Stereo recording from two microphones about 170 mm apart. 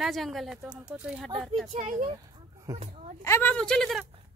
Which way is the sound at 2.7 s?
20° right (ahead or behind).